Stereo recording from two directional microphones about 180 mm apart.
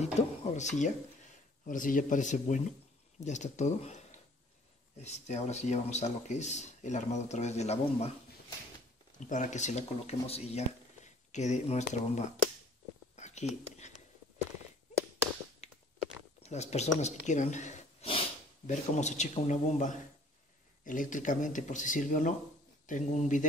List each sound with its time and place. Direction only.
0.0 s a man's voice: 40° left (ahead or behind)
9.3 s a man's voice: 40° left (ahead or behind)
13.1 s whispering: 40° left (ahead or behind)
15.6 s a sound: 35° left (ahead or behind)
16.4 s a man's voice: 40° left (ahead or behind)